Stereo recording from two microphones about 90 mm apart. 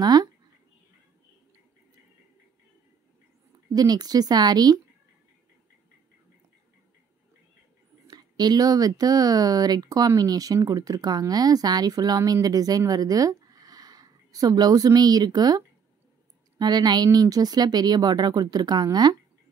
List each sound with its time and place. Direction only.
0.0 s speech: 50° right (ahead or behind)
3.7 s speech: 50° right (ahead or behind)
8.1 s speech: 50° right (ahead or behind)